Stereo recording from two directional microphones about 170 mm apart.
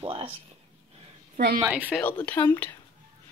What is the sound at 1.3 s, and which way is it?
Speech, 60° right (ahead or behind).